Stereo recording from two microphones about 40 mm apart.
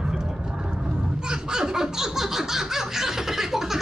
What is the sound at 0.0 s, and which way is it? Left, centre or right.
Vehicle, centre.